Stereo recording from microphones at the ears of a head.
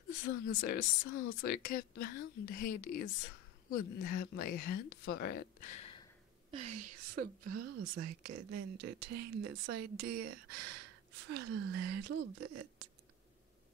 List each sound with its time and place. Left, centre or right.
0.0 s speech: left
6.5 s speech: right